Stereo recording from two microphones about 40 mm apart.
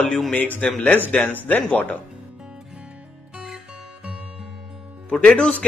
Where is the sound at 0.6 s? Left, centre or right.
Left.